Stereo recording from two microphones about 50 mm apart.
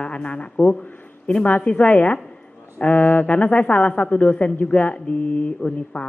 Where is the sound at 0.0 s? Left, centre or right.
Left.